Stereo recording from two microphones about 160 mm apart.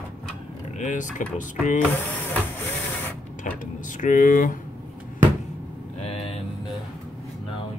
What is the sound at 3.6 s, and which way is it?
Speech, 55° left (ahead or behind).